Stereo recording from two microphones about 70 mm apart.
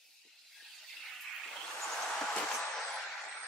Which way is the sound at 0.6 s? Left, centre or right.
Centre.